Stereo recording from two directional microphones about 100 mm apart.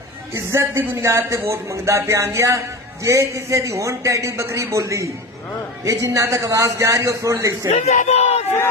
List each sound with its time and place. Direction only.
0.3 s a man's voice: 25° right (ahead or behind)
7.8 s speech: 90° left